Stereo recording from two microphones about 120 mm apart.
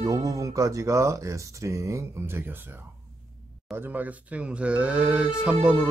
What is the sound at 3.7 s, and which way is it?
Music, 15° right (ahead or behind).